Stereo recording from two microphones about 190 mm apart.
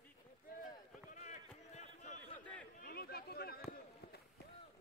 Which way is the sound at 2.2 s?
5° left (ahead or behind).